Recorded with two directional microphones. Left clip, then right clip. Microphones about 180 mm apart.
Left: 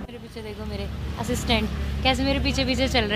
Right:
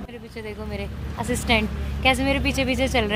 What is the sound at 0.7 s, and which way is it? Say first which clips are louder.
Speech: right 1 dB; 20° right (ahead or behind).